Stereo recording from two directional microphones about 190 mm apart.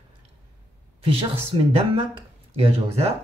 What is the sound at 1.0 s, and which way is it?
Speech, 30° right (ahead or behind).